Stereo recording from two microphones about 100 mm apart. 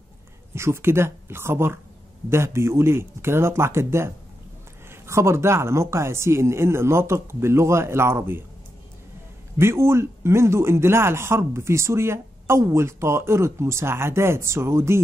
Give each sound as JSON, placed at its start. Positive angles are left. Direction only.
{"t": 0.6, "sound": "speech", "side_deg": -25}
{"t": 9.6, "sound": "speech", "side_deg": -25}